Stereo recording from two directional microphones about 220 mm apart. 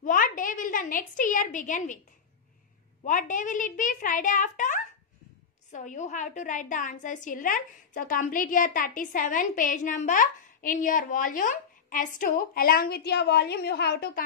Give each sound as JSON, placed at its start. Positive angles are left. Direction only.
{"t": 0.0, "sound": "a woman's voice", "side_deg": 40}
{"t": 3.0, "sound": "a woman's voice", "side_deg": 35}